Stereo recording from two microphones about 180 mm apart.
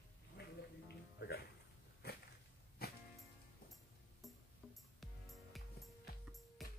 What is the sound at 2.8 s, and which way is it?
Music, 60° left (ahead or behind).